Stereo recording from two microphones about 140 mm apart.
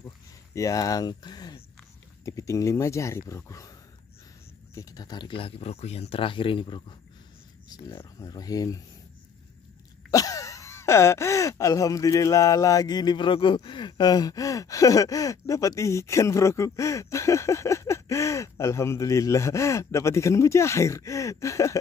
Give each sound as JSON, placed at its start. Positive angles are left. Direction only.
{"t": 0.6, "sound": "speech", "side_deg": 25}
{"t": 4.7, "sound": "speech", "side_deg": 25}
{"t": 7.7, "sound": "speech", "side_deg": 25}
{"t": 10.1, "sound": "speech", "side_deg": 25}